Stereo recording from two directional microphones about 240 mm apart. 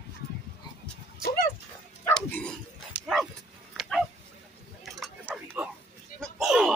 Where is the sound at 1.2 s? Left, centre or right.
Left.